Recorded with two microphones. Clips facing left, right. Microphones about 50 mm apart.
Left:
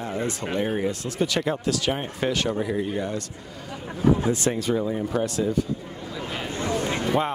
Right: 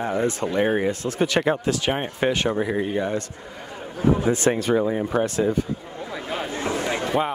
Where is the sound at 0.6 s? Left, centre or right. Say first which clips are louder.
Right 4 dB; right.